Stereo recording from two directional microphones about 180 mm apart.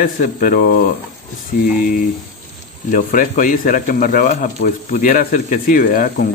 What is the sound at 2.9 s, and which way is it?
Speech, 45° left (ahead or behind).